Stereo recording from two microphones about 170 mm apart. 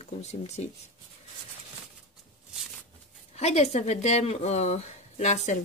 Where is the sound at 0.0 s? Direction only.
40° left (ahead or behind).